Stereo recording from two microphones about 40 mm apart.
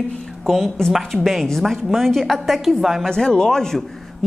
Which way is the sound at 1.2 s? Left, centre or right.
Centre.